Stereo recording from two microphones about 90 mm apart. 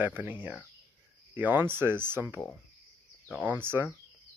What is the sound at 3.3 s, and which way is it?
Speech, 15° left (ahead or behind).